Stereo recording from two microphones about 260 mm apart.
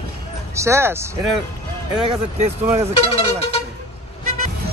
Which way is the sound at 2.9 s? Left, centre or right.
Left.